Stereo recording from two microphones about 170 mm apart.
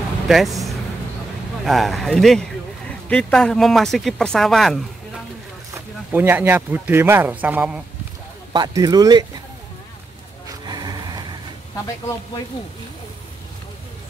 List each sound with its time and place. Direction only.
0.3 s speech: centre (ahead or behind)
1.7 s speech: centre (ahead or behind)
5.8 s speech: 10° right (ahead or behind)
8.5 s speech: 20° right (ahead or behind)
10.6 s music: 25° right (ahead or behind)